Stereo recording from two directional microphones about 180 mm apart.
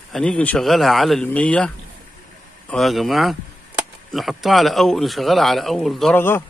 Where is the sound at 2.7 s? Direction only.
Centre (ahead or behind).